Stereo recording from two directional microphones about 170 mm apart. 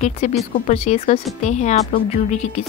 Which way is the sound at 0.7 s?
40° left (ahead or behind).